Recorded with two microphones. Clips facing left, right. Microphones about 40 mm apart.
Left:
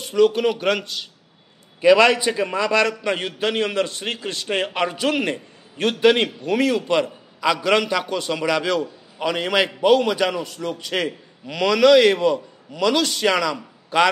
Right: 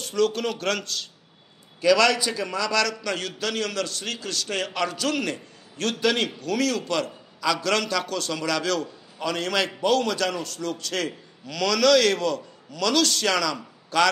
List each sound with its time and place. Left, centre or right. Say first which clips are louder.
0.0 s a man's voice: left 6 dB; centre